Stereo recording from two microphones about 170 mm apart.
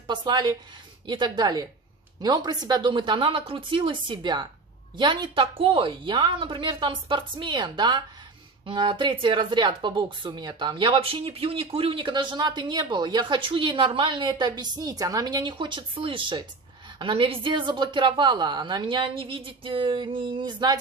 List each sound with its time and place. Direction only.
0.0 s speech: 25° right (ahead or behind)